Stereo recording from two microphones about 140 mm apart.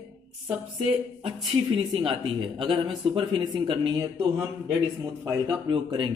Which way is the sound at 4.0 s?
25° right (ahead or behind).